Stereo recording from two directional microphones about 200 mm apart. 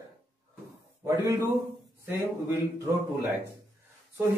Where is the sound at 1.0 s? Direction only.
15° right (ahead or behind).